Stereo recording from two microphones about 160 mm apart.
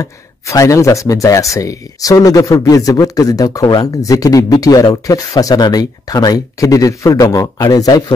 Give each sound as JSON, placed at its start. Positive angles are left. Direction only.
{"t": 0.0, "sound": "speech", "side_deg": 20}